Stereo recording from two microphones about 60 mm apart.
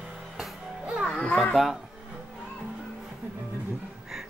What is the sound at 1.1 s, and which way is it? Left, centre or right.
Children playing, centre.